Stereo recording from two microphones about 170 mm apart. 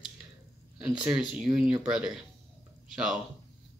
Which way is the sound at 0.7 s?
5° right (ahead or behind).